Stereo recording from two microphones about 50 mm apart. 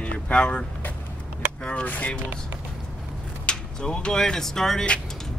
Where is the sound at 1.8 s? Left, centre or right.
Left.